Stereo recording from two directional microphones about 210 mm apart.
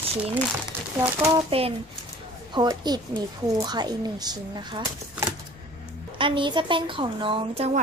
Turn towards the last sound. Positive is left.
turn(degrees=-25)  # may be behind; listen again after turning